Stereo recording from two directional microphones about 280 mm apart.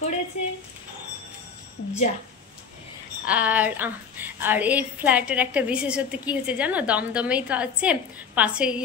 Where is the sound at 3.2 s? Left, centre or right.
Centre.